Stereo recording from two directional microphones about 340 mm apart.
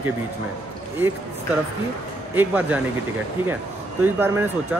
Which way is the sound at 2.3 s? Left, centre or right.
Centre.